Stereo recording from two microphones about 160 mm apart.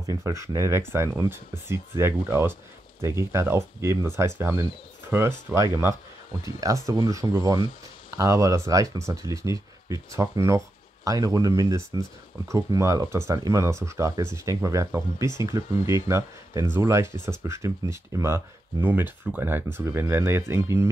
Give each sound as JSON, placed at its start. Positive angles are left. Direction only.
{"t": 0.0, "sound": "speech", "side_deg": -20}